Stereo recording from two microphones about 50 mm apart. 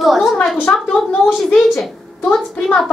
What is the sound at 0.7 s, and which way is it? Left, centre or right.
Speech, centre.